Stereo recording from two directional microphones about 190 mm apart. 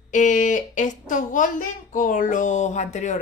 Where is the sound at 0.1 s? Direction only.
40° left (ahead or behind).